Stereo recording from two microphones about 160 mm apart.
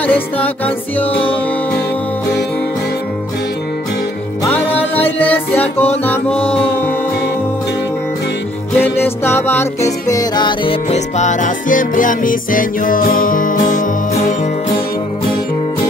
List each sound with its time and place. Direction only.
0.0 s music: 10° left (ahead or behind)
4.5 s music: 10° left (ahead or behind)
8.7 s music: 15° left (ahead or behind); by 13.8 s 55° left (ahead or behind)